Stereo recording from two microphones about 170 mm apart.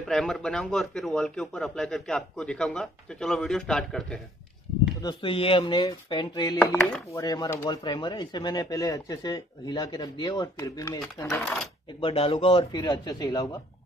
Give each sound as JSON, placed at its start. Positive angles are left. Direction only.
{"t": 0.1, "sound": "a man's voice", "side_deg": 5}
{"t": 5.0, "sound": "speech", "side_deg": 30}
{"t": 12.0, "sound": "speech", "side_deg": 35}